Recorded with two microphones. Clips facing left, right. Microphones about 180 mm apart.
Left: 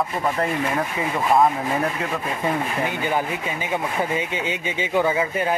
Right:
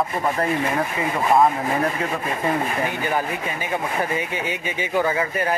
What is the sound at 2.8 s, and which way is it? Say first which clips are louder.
Speech: even; 15° left (ahead or behind).